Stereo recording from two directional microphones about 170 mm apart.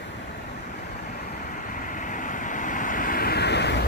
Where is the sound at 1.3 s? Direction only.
50° left (ahead or behind); by 3.9 s 80° left.